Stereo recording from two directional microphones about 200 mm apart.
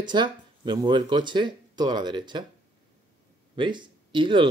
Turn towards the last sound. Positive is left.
turn(degrees=-25)  # may be behind; listen again after turning